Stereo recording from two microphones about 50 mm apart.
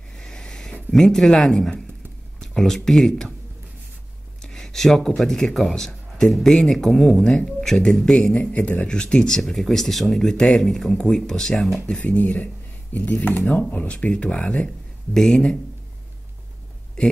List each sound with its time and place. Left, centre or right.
0.1 s a sound: centre
0.9 s speech: centre
4.4 s a man's voice: centre
8.4 s speech: left
8.8 s speech: centre
12.0 s speech: left
13.8 s speech: left
15.1 s speech: centre